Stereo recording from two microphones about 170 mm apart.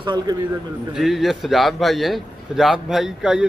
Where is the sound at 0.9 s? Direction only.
Centre (ahead or behind).